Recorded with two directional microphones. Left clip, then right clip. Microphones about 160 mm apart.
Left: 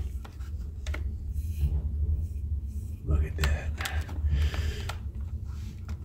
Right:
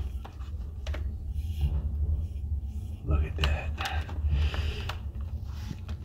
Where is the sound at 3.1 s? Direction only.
Centre (ahead or behind).